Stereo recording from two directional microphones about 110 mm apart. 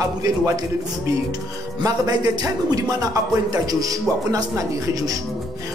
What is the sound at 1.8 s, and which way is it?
A man's voice, 30° right (ahead or behind).